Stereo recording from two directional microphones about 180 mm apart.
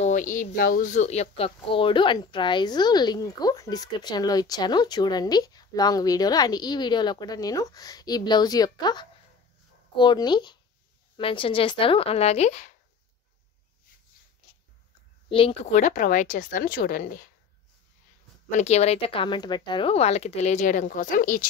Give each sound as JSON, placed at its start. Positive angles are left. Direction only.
{"t": 0.0, "sound": "speech", "side_deg": 45}
{"t": 15.2, "sound": "speech", "side_deg": 30}
{"t": 15.7, "sound": "a woman's voice", "side_deg": 45}
{"t": 18.6, "sound": "speech", "side_deg": 35}